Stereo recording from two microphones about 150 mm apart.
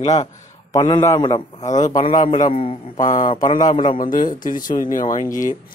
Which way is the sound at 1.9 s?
30° left (ahead or behind).